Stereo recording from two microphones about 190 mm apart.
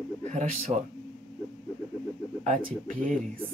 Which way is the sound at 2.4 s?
40° right (ahead or behind).